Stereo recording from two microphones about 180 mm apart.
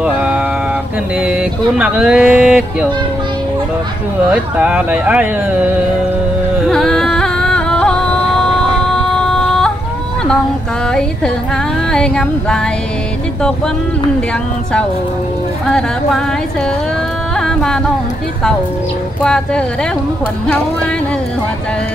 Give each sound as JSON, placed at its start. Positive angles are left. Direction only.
{"t": 0.0, "sound": "mantra", "side_deg": -5}
{"t": 1.2, "sound": "speech", "side_deg": -5}
{"t": 4.3, "sound": "speech", "side_deg": -5}
{"t": 6.7, "sound": "music", "side_deg": 5}
{"t": 9.1, "sound": "a sound", "side_deg": 5}
{"t": 10.9, "sound": "speech", "side_deg": 5}
{"t": 17.4, "sound": "music", "side_deg": 5}
{"t": 19.2, "sound": "speech", "side_deg": 5}